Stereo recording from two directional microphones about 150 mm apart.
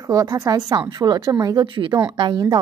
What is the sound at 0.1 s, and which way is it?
A woman's voice, 25° right (ahead or behind).